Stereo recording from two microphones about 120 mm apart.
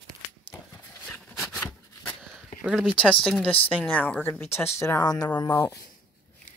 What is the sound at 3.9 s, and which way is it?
Speech, 10° left (ahead or behind).